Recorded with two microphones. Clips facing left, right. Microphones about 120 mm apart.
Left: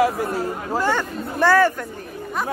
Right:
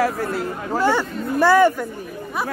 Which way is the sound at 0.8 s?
10° right (ahead or behind).